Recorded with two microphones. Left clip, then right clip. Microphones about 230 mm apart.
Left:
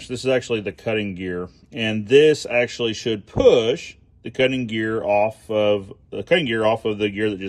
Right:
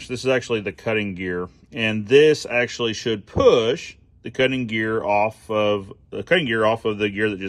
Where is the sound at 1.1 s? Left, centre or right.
Centre.